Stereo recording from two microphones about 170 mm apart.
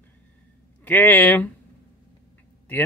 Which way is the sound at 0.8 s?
10° left (ahead or behind).